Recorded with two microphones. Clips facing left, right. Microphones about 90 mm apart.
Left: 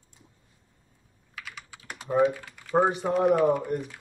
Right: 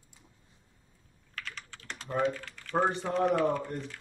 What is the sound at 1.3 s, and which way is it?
Typing, 10° left (ahead or behind).